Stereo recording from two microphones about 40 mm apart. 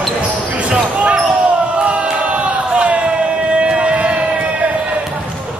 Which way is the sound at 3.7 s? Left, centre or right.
Right.